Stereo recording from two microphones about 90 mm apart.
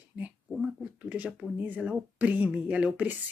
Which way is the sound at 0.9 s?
20° right (ahead or behind).